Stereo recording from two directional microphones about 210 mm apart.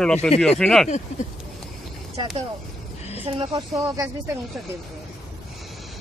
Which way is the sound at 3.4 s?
20° right (ahead or behind).